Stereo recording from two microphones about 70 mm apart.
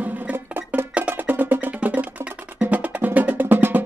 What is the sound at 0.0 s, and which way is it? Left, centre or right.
Music, right.